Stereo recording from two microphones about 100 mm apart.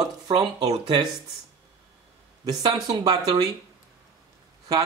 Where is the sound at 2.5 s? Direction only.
40° right (ahead or behind).